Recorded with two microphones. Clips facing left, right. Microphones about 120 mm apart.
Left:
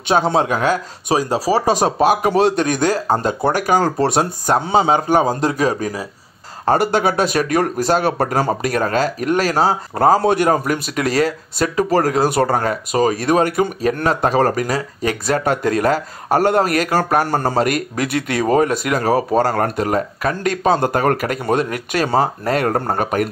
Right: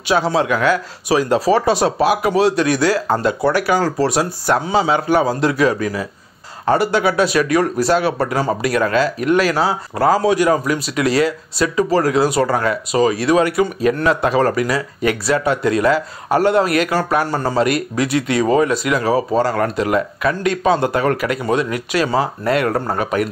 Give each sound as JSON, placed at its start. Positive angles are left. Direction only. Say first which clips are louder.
{"t": 0.4, "sound": "a man's voice", "louder": "right 1 dB", "side_deg": 40}
{"t": 1.1, "sound": "a man's voice", "louder": "right 1 dB", "side_deg": 25}
{"t": 1.5, "sound": "a man's voice", "louder": "left 1 dB", "side_deg": 40}
{"t": 4.5, "sound": "a man's voice", "louder": "right 2 dB", "side_deg": 25}
{"t": 4.7, "sound": "a man's voice", "louder": "left 2 dB", "side_deg": 45}